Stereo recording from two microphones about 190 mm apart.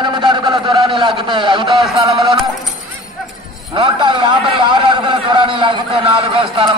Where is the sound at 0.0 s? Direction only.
25° right (ahead or behind).